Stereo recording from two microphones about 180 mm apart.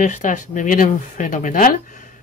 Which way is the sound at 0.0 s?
45° left (ahead or behind).